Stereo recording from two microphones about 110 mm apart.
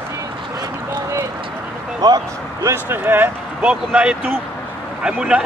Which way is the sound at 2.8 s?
20° right (ahead or behind).